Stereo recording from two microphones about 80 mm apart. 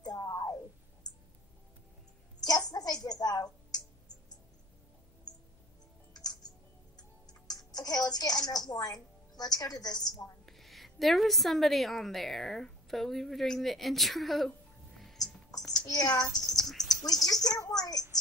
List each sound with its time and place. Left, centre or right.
0.0 s music: left
2.4 s a sound: left
6.1 s music: left
10.4 s a woman's voice: centre
15.0 s whispering: centre
16.2 s a sound: centre
17.0 s speech: left